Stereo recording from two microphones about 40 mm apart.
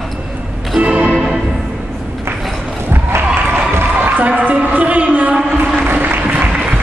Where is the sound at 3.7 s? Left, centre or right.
Right.